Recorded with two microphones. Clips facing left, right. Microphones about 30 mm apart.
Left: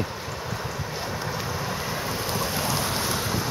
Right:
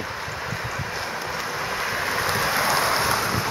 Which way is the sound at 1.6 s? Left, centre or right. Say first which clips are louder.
Right 4 dB; right.